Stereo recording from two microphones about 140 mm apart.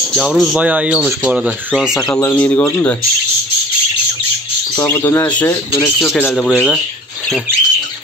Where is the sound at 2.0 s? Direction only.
20° left (ahead or behind).